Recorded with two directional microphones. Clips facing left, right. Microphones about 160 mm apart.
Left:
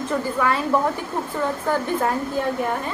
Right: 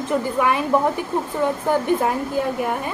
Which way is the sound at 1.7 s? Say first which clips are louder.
Right 2 dB; 15° right (ahead or behind).